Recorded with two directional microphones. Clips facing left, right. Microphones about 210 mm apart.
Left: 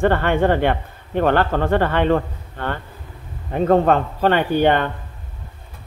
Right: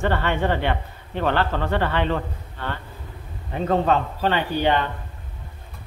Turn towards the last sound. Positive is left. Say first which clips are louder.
# left 5 dB
turn(degrees=55)  # may be behind; listen again after turning